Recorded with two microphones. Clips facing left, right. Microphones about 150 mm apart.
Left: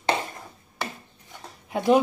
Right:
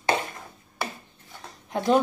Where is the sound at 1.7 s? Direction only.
5° left (ahead or behind).